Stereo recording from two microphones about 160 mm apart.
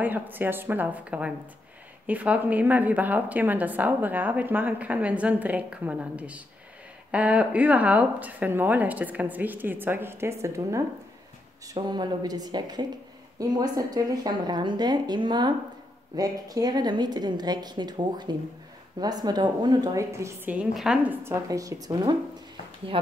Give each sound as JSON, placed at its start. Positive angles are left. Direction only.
{"t": 0.0, "sound": "a woman's voice", "side_deg": -10}